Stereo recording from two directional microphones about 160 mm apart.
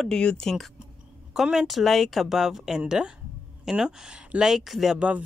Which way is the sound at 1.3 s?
Centre (ahead or behind).